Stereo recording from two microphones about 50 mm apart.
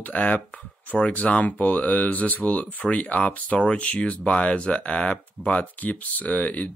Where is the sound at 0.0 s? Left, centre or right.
Left.